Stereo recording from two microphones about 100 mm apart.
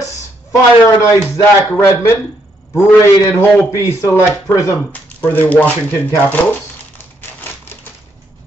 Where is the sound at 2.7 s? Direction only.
25° left (ahead or behind).